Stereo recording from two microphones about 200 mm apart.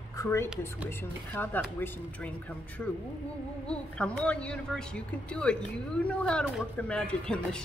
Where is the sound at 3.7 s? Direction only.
5° left (ahead or behind).